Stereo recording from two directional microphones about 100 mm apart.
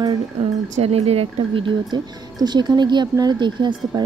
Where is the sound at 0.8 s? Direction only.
85° right.